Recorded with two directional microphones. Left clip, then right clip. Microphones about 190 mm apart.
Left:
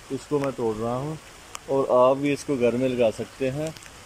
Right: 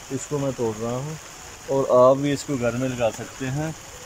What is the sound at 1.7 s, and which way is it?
Speech, 5° left (ahead or behind).